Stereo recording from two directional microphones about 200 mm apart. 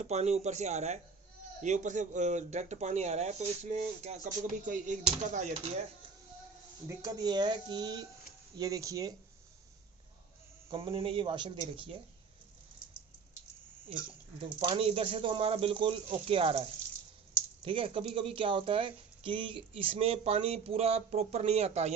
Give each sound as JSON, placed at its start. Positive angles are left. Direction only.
{"t": 0.0, "sound": "speech", "side_deg": -35}
{"t": 6.9, "sound": "speech", "side_deg": -20}
{"t": 10.7, "sound": "speech", "side_deg": -25}
{"t": 14.7, "sound": "speech", "side_deg": -30}